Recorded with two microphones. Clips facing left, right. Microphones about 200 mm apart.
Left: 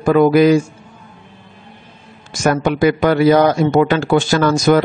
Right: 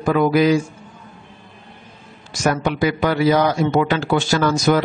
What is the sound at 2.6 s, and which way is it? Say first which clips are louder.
Speech: left 5 dB; 50° left (ahead or behind).